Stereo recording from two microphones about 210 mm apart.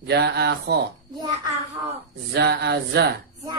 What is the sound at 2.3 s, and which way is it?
Speech, 50° right (ahead or behind).